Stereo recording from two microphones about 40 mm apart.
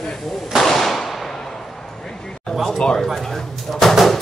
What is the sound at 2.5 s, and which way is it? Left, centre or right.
Speech, centre.